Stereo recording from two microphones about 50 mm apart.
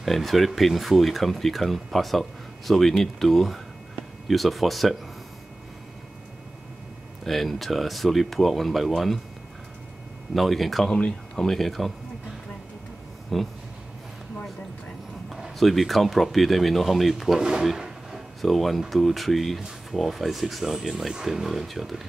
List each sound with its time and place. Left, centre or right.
0.0 s speech: centre
7.2 s speech: centre
10.3 s speech: centre
10.9 s speech: centre
11.4 s speech: centre
13.3 s speech: centre
15.2 s a sound: centre
15.6 s speech: centre
17.7 s a sound: centre
18.4 s speech: centre